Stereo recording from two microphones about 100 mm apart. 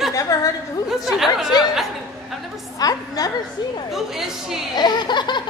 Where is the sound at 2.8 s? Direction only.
40° left (ahead or behind).